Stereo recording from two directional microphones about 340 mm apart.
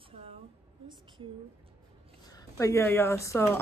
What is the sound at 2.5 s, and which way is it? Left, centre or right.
Speech, centre.